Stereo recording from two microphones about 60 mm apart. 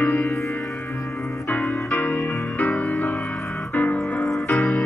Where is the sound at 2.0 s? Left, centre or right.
Left.